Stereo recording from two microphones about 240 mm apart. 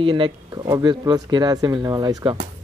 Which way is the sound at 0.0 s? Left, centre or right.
Right.